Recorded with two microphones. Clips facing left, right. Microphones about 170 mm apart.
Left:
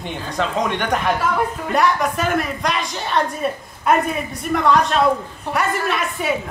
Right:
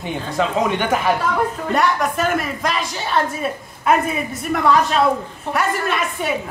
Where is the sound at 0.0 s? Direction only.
5° right (ahead or behind).